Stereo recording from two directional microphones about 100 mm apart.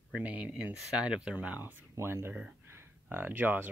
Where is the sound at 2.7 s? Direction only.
25° right (ahead or behind).